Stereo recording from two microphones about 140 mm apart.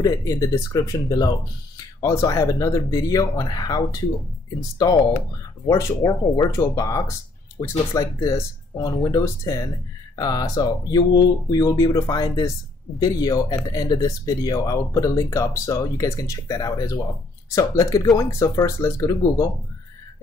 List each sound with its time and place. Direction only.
0.0 s speech: 25° left (ahead or behind)